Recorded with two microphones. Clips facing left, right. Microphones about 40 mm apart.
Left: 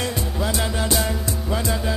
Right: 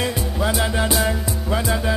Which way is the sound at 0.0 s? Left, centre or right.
Centre.